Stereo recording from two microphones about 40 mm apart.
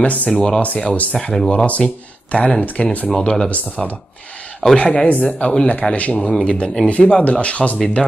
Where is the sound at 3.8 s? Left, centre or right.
Centre.